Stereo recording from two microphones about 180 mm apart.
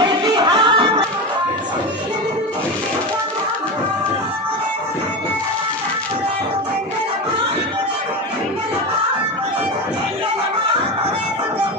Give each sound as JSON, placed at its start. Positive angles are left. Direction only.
{"t": 0.0, "sound": "music", "side_deg": -25}